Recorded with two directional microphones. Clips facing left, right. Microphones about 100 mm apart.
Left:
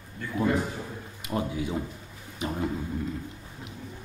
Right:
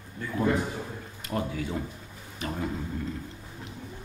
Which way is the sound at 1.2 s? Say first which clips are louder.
Left 1 dB; 15° left (ahead or behind).